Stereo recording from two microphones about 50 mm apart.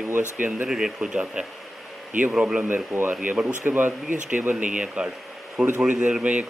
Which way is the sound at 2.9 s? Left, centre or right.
Right.